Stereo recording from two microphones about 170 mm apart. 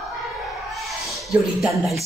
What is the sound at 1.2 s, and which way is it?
Speech, centre (ahead or behind).